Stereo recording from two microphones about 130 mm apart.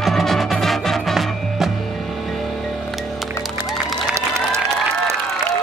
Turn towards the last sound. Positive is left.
turn(degrees=-20)  # may be behind; listen again after turning